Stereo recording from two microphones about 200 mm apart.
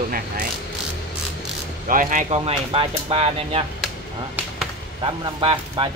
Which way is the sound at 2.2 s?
30° right (ahead or behind).